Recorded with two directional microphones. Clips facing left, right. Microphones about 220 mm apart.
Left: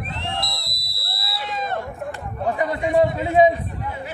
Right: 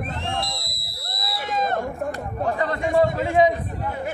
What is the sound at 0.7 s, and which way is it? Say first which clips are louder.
Fire alarm: right 1 dB; 35° left (ahead or behind).